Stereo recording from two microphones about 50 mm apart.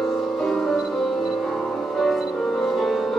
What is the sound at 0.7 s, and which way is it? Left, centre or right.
Music, centre.